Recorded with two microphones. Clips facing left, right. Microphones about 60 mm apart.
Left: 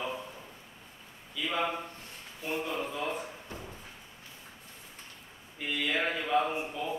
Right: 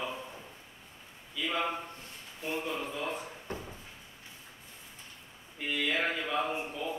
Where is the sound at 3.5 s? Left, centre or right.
Right.